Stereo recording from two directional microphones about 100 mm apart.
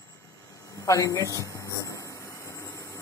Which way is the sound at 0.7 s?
30° left (ahead or behind).